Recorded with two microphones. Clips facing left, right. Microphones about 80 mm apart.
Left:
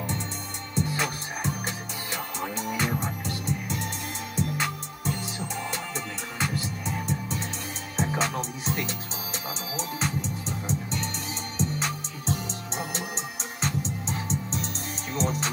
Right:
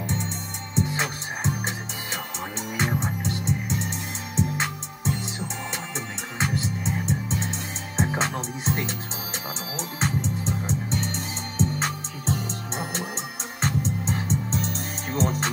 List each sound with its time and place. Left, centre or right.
0.7 s music: right